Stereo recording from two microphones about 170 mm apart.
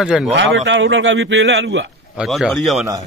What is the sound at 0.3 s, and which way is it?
A man's voice, 90° right.